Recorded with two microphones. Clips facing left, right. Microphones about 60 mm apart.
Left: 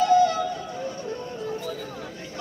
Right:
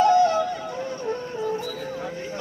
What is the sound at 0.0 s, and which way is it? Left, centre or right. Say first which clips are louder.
Music: right 2 dB; right.